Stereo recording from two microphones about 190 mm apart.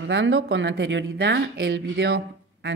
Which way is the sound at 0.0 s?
75° right (ahead or behind).